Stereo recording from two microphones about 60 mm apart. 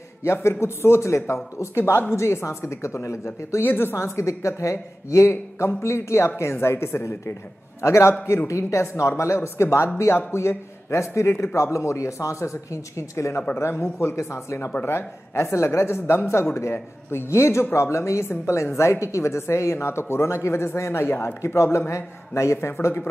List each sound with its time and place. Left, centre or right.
0.2 s speech: left
3.6 s a woman's voice: left
3.9 s speech: left
13.6 s speech: left